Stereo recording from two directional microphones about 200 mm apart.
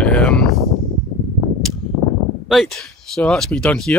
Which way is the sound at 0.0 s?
5° left (ahead or behind).